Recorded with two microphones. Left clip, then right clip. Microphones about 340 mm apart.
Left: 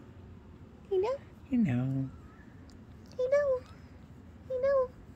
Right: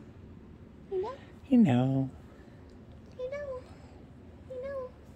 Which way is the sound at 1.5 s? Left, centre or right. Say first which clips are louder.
Right 7 dB; right.